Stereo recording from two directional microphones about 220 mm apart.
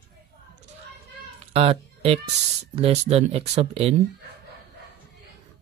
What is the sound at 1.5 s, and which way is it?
Speech, 25° right (ahead or behind).